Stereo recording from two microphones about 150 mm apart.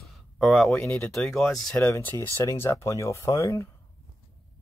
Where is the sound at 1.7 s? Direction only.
15° left (ahead or behind).